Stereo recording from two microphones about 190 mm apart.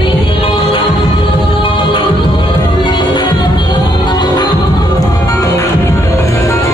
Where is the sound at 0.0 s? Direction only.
25° left (ahead or behind).